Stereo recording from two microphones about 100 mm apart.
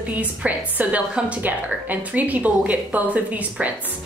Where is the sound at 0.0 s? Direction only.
15° right (ahead or behind).